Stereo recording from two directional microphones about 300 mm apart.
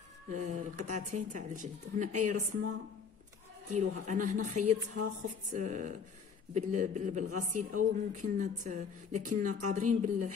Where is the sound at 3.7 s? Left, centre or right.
Right.